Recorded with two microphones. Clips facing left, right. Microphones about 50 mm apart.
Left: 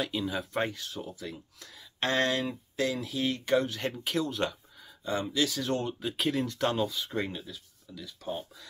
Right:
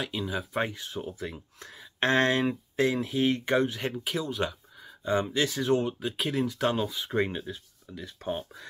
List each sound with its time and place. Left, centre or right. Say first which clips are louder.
0.0 s speech: even; centre
0.7 s speech: right 3 dB; right
3.7 s speech: even; centre
5.0 s speech: right 3 dB; right
5.7 s speech: right 5 dB; centre; by 8.6 s right